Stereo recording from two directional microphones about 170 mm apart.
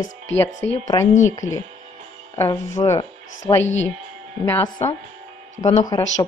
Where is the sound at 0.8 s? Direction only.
20° left (ahead or behind).